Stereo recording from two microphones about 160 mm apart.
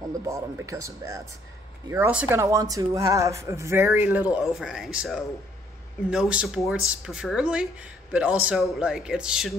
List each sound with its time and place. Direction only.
0.3 s speech: 20° right (ahead or behind)